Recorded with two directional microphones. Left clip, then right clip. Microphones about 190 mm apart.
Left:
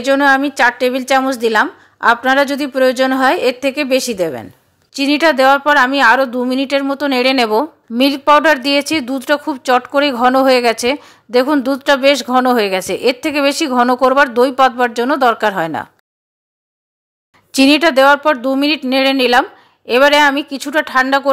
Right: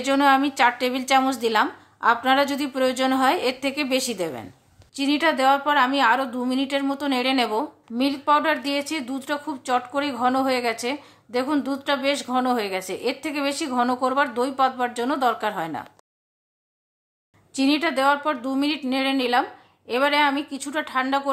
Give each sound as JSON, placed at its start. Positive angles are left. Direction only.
{"t": 0.0, "sound": "a woman's voice", "side_deg": 25}
{"t": 17.5, "sound": "a woman's voice", "side_deg": 40}